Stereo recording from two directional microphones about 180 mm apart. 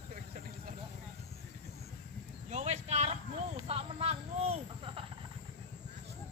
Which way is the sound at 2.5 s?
40° right (ahead or behind).